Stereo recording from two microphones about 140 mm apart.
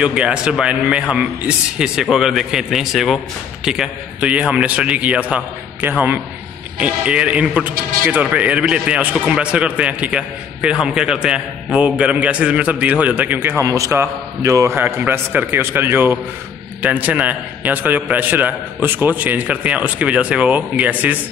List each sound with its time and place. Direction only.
0.0 s a man's voice: 5° right (ahead or behind)